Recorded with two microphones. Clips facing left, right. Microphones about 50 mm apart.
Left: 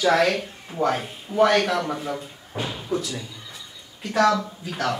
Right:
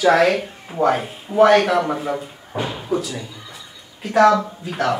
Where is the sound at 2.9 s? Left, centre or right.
Centre.